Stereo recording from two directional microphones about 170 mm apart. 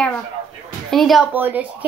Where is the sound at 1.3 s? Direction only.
10° right (ahead or behind).